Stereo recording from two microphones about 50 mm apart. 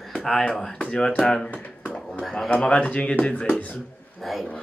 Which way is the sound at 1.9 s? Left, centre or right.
Centre.